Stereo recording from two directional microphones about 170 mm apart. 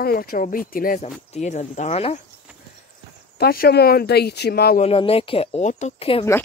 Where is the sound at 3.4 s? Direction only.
65° left (ahead or behind).